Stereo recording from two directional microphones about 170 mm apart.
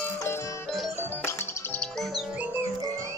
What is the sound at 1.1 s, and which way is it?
Music, 15° left (ahead or behind).